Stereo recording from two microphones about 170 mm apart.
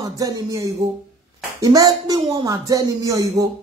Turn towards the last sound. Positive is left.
turn(degrees=-20)  # may be behind; listen again after turning